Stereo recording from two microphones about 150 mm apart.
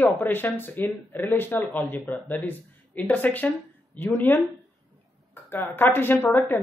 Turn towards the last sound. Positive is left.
turn(degrees=10)  # may be behind; listen again after turning